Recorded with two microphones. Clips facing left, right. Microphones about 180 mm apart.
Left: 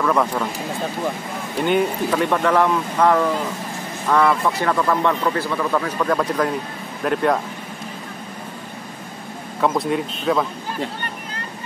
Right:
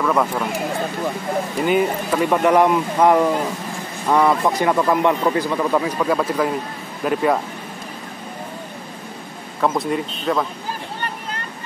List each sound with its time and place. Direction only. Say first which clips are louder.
0.0 s speech: even; 5° right (ahead or behind)
1.6 s speech: left 1 dB; 5° right (ahead or behind)
9.6 s speech: even; centre (ahead or behind)